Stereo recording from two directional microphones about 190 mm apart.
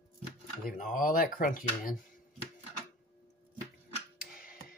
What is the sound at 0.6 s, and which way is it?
Speech, 45° left (ahead or behind).